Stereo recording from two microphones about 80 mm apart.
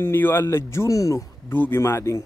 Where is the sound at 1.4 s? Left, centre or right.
Left.